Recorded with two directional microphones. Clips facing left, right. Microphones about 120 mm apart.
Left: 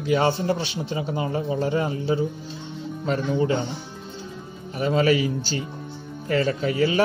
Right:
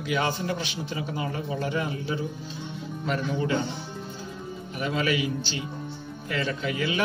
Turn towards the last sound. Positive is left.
turn(degrees=35)  # may be behind; listen again after turning